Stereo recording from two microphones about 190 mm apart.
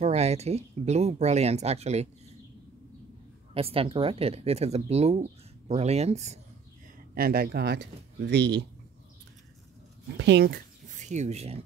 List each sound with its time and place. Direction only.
0.0 s speech: 35° right (ahead or behind)
3.5 s speech: 30° right (ahead or behind)
7.2 s speech: 55° right (ahead or behind)
10.1 s speech: 65° right (ahead or behind)
11.0 s speech: 40° right (ahead or behind)